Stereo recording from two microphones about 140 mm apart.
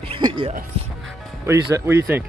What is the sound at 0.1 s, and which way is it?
Music, 35° right (ahead or behind).